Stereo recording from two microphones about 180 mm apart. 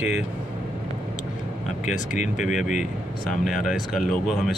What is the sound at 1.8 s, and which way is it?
Speech, 45° left (ahead or behind).